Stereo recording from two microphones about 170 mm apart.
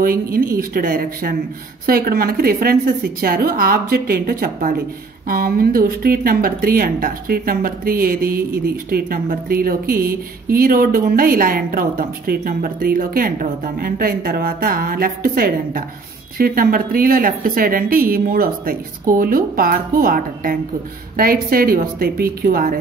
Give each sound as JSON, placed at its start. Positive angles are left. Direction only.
{"t": 0.0, "sound": "speech", "side_deg": -60}